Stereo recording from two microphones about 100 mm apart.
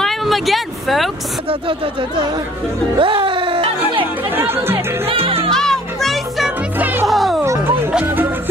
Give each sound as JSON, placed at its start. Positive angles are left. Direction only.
{"t": 0.0, "sound": "speech", "side_deg": 0}
{"t": 1.5, "sound": "speech", "side_deg": -60}
{"t": 3.0, "sound": "music", "side_deg": -60}
{"t": 4.4, "sound": "speech", "side_deg": -20}
{"t": 5.0, "sound": "music", "side_deg": -75}
{"t": 5.5, "sound": "music", "side_deg": 5}
{"t": 6.8, "sound": "music", "side_deg": -20}
{"t": 7.1, "sound": "music", "side_deg": 0}
{"t": 7.4, "sound": "music", "side_deg": -25}